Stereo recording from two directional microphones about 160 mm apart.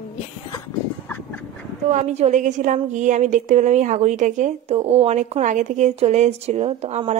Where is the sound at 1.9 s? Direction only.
45° right (ahead or behind).